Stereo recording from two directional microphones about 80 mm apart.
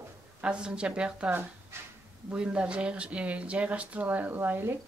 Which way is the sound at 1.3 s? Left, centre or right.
Right.